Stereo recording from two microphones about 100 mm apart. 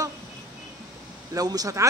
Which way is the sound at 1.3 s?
40° right (ahead or behind).